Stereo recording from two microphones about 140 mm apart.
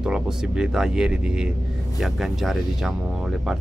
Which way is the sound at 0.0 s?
5° right (ahead or behind).